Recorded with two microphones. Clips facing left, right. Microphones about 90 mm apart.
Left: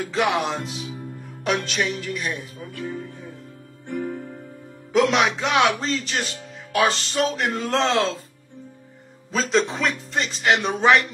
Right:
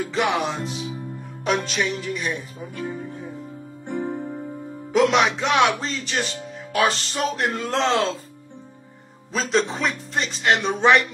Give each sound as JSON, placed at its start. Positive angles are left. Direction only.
{"t": 0.1, "sound": "speech", "side_deg": 0}
{"t": 2.7, "sound": "speech", "side_deg": -20}
{"t": 3.8, "sound": "music", "side_deg": -20}
{"t": 4.9, "sound": "speech", "side_deg": 0}
{"t": 9.3, "sound": "speech", "side_deg": 0}